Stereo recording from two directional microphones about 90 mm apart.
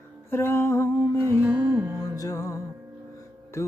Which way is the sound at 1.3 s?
20° right (ahead or behind).